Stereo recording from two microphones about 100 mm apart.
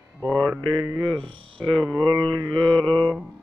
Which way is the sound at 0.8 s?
35° right (ahead or behind).